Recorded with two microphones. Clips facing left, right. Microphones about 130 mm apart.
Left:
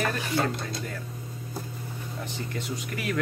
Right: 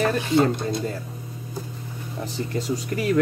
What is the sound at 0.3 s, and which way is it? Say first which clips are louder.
Speech: right 8 dB; 25° right (ahead or behind).